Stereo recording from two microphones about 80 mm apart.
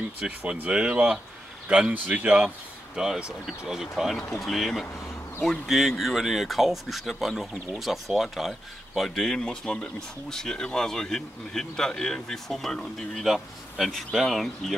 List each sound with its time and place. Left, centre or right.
0.4 s speech: centre